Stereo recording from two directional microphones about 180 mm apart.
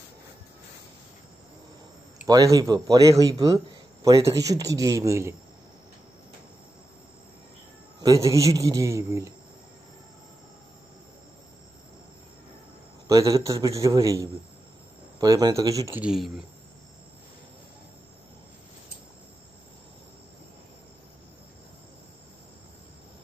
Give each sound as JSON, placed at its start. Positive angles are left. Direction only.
{"t": 2.2, "sound": "a man's voice", "side_deg": -20}
{"t": 8.0, "sound": "a man's voice", "side_deg": -20}
{"t": 13.1, "sound": "a man's voice", "side_deg": -20}
{"t": 15.9, "sound": "speech", "side_deg": -5}